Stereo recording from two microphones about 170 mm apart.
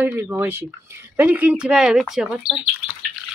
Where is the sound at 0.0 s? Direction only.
15° right (ahead or behind).